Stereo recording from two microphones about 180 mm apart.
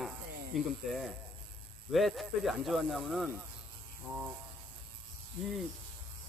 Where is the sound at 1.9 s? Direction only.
Centre (ahead or behind).